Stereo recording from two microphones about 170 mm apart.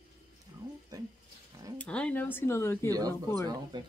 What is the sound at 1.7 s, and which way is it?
Speech, 5° left (ahead or behind).